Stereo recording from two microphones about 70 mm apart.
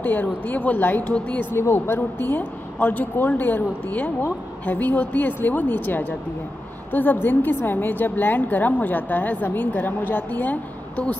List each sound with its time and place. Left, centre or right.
0.0 s a woman's voice: left
1.5 s a woman's voice: left